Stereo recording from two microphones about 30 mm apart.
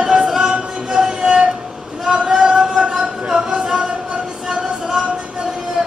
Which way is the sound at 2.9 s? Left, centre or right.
Right.